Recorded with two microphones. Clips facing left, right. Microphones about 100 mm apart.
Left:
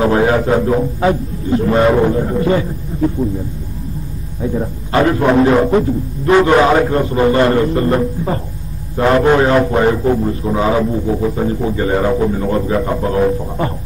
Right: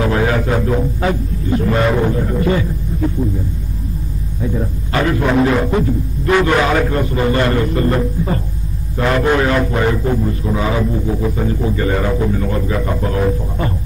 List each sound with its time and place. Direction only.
0.0 s a man's voice: 30° left (ahead or behind)
4.6 s a man's voice: 30° left (ahead or behind)